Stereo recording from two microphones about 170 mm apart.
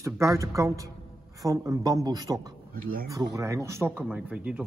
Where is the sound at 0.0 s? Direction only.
15° right (ahead or behind).